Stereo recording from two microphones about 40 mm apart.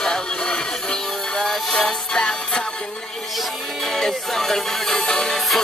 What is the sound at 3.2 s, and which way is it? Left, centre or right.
Music, centre.